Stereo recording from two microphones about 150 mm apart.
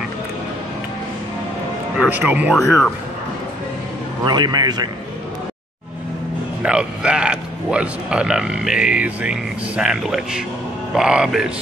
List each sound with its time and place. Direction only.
2.0 s speech: 10° right (ahead or behind)
4.2 s a man's voice: 30° right (ahead or behind)
6.6 s speech: 5° right (ahead or behind)